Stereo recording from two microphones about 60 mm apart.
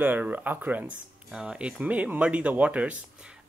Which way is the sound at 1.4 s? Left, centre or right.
Centre.